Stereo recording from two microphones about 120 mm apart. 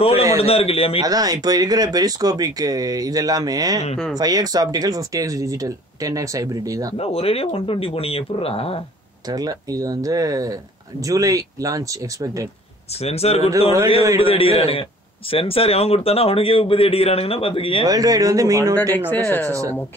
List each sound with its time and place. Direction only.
0.4 s a man's voice: 55° left (ahead or behind)
1.0 s speech: 30° right (ahead or behind)
3.9 s speech: centre (ahead or behind)
4.2 s speech: 30° right (ahead or behind)
7.0 s a man's voice: 55° left (ahead or behind)
9.3 s speech: 30° right (ahead or behind)
13.0 s a man's voice: 60° left (ahead or behind)
17.8 s speech: 30° right (ahead or behind)
18.9 s speech: 15° left (ahead or behind)
19.4 s speech: 25° right (ahead or behind)